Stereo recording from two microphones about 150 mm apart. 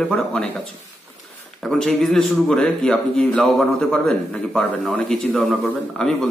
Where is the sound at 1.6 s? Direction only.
5° left (ahead or behind).